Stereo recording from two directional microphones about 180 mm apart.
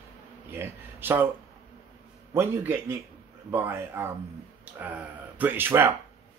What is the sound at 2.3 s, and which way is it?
Speech, 15° right (ahead or behind).